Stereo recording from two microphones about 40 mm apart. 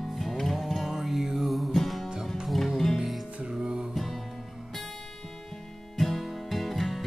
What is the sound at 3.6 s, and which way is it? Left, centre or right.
Music, right.